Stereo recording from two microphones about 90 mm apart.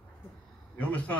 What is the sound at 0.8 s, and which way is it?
Speech, 15° left (ahead or behind).